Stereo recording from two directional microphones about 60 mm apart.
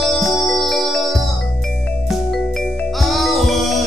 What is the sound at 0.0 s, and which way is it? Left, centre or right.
Music, centre.